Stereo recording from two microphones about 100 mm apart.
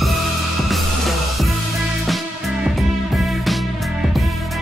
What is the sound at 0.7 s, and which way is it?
Music, centre (ahead or behind).